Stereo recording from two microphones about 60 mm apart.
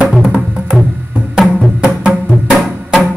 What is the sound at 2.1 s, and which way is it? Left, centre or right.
Music, centre.